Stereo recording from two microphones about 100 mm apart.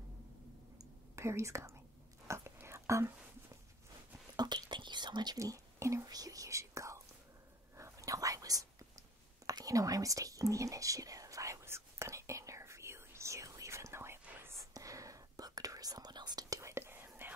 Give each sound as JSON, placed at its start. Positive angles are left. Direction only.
{"t": 1.1, "sound": "speech", "side_deg": -30}
{"t": 2.2, "sound": "whispering", "side_deg": -25}
{"t": 4.4, "sound": "whispering", "side_deg": -45}
{"t": 6.0, "sound": "speech", "side_deg": -40}
{"t": 7.7, "sound": "whispering", "side_deg": -30}